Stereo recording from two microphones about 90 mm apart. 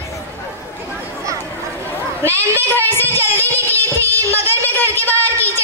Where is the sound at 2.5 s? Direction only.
20° left (ahead or behind).